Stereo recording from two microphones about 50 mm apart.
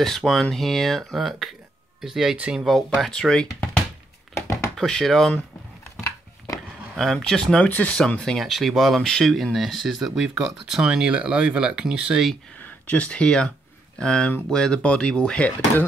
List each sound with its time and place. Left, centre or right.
0.0 s speech: centre
3.1 s speech: centre
4.3 s thunk: left
4.7 s speech: centre
7.0 s speech: centre
7.6 s speech: left
8.4 s speech: centre; by 12.2 s right
12.6 s speech: left